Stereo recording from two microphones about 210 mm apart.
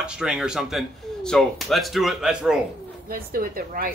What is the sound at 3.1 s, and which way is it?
Speech, 45° right (ahead or behind).